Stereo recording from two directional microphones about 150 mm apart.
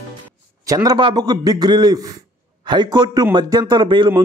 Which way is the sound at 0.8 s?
30° right (ahead or behind).